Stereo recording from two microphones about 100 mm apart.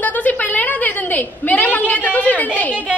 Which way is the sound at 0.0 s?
15° left (ahead or behind).